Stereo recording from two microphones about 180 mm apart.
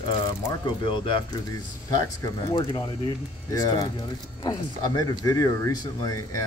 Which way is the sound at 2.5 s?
25° left (ahead or behind).